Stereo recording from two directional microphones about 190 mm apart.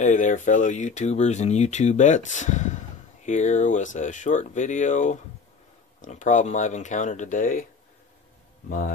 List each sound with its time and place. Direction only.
0.0 s speech: 40° left (ahead or behind)
8.6 s a man's voice: 45° left (ahead or behind)